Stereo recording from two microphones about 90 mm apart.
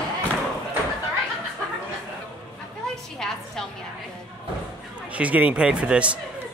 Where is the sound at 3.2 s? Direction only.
5° left (ahead or behind).